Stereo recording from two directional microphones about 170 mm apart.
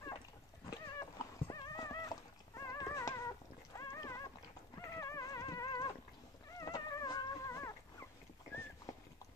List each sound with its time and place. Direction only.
0.7 s horse: 20° left (ahead or behind)
4.9 s music: 20° left (ahead or behind)
6.6 s dog: 20° left (ahead or behind)